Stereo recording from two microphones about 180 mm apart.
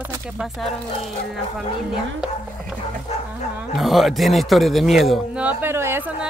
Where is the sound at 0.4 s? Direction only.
Centre (ahead or behind).